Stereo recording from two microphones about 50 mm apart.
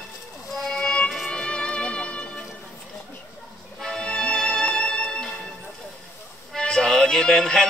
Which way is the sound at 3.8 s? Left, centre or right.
Centre.